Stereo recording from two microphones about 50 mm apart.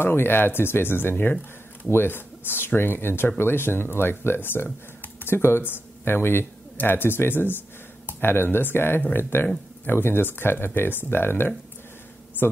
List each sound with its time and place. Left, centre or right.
0.0 s speech: left